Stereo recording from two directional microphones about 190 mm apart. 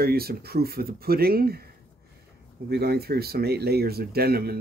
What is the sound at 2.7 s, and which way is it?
Speech, 55° right (ahead or behind).